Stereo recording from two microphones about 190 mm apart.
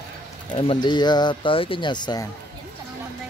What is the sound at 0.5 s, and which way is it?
Speech, 25° left (ahead or behind).